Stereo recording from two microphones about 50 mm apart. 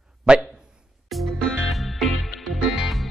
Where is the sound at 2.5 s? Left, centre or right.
Centre.